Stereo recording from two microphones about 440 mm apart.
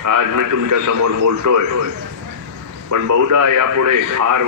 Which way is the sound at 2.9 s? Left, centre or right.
Right.